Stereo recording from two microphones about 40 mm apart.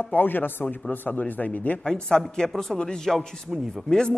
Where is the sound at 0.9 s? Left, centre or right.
Left.